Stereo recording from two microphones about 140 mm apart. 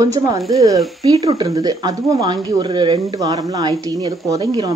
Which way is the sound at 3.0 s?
25° right (ahead or behind).